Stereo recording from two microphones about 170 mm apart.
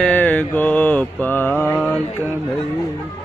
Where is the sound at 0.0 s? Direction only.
10° left (ahead or behind).